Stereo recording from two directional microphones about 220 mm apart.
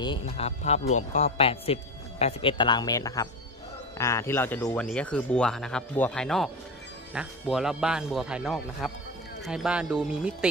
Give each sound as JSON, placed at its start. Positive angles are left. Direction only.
{"t": 0.0, "sound": "speech", "side_deg": 25}